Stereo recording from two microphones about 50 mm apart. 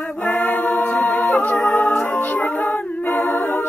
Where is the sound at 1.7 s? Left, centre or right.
Left.